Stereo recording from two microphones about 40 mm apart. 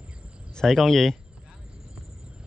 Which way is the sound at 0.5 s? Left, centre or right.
Centre.